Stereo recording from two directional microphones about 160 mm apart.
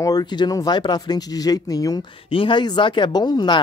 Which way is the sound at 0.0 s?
25° left (ahead or behind).